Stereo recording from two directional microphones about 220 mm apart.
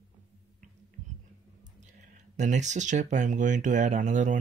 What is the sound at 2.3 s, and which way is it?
Speech, 30° right (ahead or behind).